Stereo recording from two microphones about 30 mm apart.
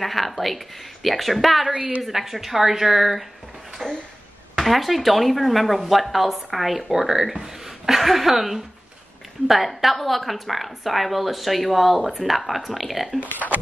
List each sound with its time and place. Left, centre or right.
0.0 s a woman's voice: centre
1.8 s a woman's voice: right
2.0 s a woman's voice: centre
3.8 s a sound: left
4.6 s a woman's voice: centre
9.8 s a woman's voice: centre